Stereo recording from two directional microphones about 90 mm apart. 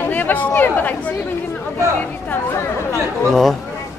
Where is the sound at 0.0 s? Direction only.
20° left (ahead or behind).